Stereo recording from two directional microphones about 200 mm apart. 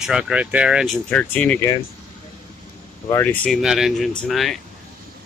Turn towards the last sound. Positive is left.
turn(degrees=0)  # may be behind; listen again after turning